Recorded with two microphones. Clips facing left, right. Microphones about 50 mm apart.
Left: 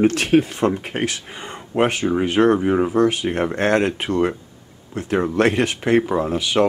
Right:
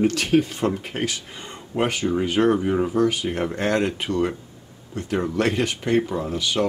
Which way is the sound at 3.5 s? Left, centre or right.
Left.